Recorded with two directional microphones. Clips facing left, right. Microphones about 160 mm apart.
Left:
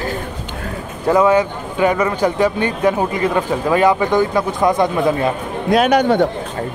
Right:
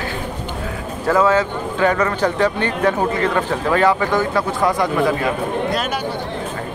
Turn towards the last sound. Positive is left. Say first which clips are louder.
# left 9 dB
turn(degrees=65)  # may be behind; listen again after turning